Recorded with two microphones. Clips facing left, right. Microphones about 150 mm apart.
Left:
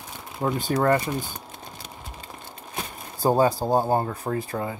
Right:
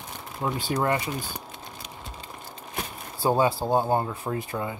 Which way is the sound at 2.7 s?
40° left (ahead or behind).